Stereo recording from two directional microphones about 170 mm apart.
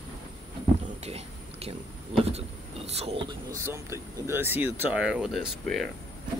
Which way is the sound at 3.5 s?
15° right (ahead or behind).